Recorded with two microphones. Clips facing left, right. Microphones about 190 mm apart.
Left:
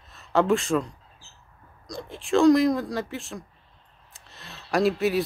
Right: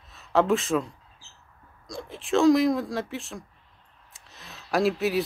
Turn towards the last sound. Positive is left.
turn(degrees=0)  # may be behind; listen again after turning